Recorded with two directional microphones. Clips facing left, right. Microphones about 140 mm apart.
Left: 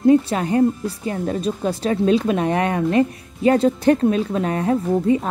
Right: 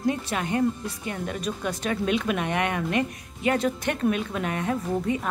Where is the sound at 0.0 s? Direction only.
30° left (ahead or behind).